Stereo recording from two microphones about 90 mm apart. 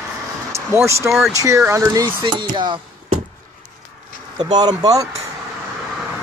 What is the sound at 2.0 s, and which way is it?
Speech, 50° right (ahead or behind).